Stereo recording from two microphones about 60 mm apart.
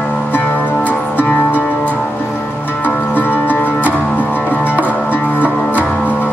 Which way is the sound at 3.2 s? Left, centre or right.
Left.